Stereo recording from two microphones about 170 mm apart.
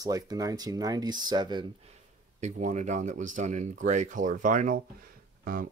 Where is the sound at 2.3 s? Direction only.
45° right (ahead or behind).